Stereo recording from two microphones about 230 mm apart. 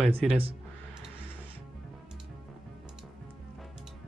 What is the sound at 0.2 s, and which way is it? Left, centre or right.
Speech, centre.